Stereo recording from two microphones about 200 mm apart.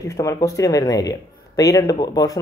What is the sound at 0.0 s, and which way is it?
A man's voice, 15° left (ahead or behind).